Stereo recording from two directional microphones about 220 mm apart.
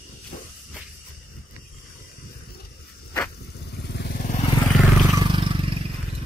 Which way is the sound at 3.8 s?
50° left (ahead or behind).